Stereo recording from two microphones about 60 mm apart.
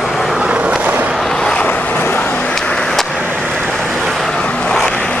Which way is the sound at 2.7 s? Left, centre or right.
Centre.